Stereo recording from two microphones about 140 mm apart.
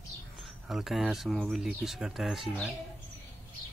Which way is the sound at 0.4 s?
Centre (ahead or behind).